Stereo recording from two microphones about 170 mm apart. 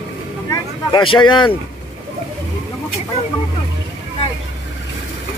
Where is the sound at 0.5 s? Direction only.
30° left (ahead or behind).